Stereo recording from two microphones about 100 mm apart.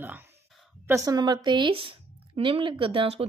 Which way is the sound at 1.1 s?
45° right (ahead or behind).